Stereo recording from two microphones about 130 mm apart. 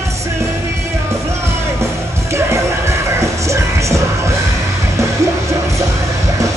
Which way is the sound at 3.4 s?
25° right (ahead or behind).